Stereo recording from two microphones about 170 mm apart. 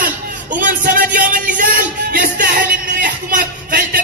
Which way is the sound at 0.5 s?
55° right (ahead or behind).